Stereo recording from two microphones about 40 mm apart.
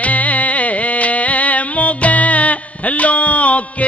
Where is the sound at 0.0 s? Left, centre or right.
Left.